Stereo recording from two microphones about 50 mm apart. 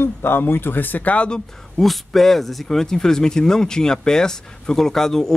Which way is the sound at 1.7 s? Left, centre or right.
Centre.